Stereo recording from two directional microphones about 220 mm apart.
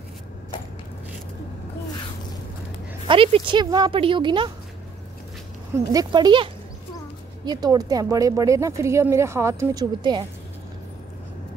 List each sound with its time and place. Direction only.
3.1 s speech: 25° right (ahead or behind)
5.9 s speech: 20° right (ahead or behind)